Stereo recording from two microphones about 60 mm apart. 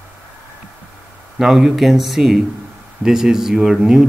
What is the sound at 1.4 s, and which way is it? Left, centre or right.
Speech, centre.